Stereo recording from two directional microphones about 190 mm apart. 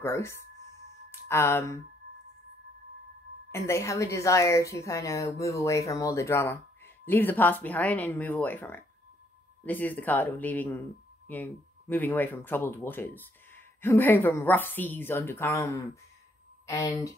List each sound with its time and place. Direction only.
0.0 s a woman's voice: 15° left (ahead or behind)
3.5 s a woman's voice: 15° left (ahead or behind)